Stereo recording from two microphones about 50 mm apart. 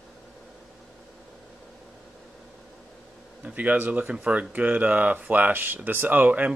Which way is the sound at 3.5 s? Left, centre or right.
Right.